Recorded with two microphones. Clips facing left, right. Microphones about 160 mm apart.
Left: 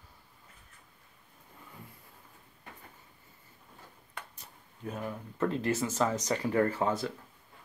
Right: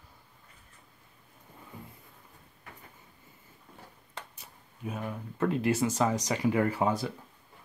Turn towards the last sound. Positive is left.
turn(degrees=-15)  # may be behind; listen again after turning